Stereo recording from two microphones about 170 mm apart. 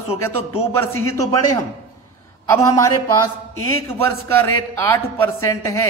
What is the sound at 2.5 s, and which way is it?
A man's voice, 15° left (ahead or behind).